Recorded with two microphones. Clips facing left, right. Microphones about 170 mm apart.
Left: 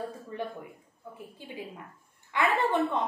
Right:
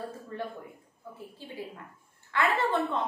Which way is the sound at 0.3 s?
15° left (ahead or behind).